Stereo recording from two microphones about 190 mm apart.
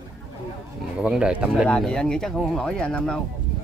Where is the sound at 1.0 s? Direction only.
5° right (ahead or behind).